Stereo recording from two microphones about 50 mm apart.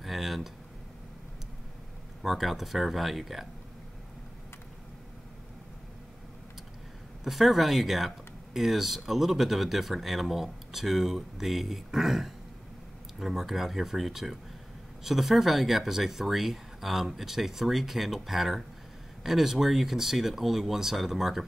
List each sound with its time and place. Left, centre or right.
0.0 s a sound: centre
2.2 s speech: centre
7.2 s speech: centre